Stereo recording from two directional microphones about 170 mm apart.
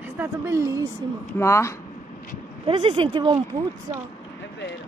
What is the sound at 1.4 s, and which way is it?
Speech, 15° left (ahead or behind).